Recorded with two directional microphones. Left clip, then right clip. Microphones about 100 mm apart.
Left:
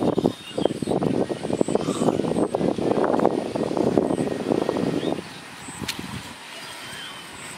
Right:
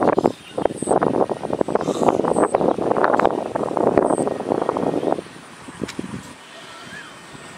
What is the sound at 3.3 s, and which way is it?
Vehicle, 65° right (ahead or behind).